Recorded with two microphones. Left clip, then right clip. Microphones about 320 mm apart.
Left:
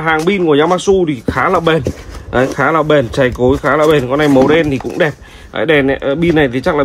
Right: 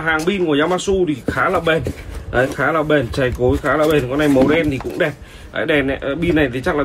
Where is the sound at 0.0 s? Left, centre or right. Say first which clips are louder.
Left 5 dB; left.